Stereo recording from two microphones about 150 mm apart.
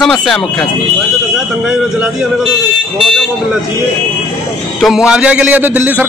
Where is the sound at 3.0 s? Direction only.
Centre (ahead or behind).